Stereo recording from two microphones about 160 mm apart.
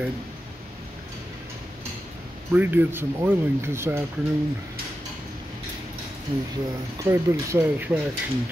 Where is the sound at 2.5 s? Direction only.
15° right (ahead or behind).